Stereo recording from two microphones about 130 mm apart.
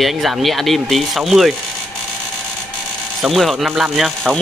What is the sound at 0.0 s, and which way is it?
Speech, centre (ahead or behind).